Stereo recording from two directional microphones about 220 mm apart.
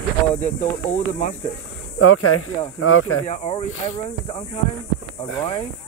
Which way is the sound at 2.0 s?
75° left (ahead or behind).